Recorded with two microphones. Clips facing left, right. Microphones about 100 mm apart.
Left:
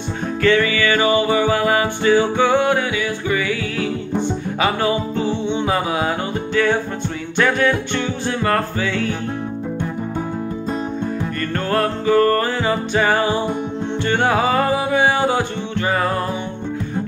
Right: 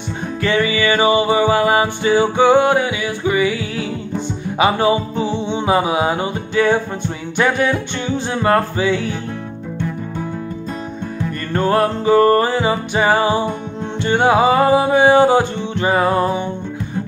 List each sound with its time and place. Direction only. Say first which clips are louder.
0.4 s music: left 1 dB; 20° right (ahead or behind)
11.5 s music: right 5 dB; 20° right (ahead or behind)
15.7 s music: right 5 dB; 20° right (ahead or behind)